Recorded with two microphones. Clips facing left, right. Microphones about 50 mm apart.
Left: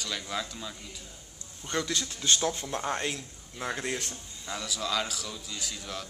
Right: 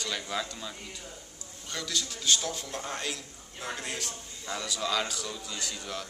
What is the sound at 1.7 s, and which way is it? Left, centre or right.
Speech, left.